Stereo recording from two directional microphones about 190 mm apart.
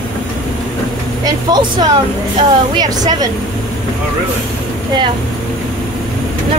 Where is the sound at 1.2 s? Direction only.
20° right (ahead or behind).